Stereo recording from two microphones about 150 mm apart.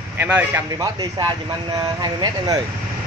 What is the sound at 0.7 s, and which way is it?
Speech, 25° right (ahead or behind).